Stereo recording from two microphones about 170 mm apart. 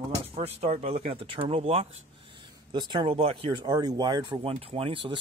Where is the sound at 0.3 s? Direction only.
35° right (ahead or behind).